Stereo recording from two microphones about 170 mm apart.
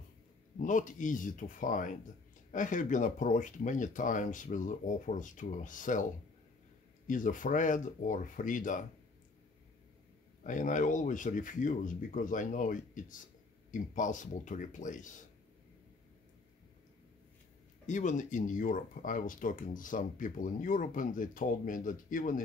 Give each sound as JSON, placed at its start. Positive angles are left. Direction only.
{"t": 0.6, "sound": "speech", "side_deg": 50}
{"t": 7.1, "sound": "speech", "side_deg": 50}
{"t": 10.4, "sound": "speech", "side_deg": 50}
{"t": 17.8, "sound": "speech", "side_deg": 45}